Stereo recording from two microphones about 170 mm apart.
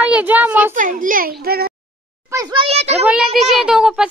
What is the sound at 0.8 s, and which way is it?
Speech, 50° right (ahead or behind).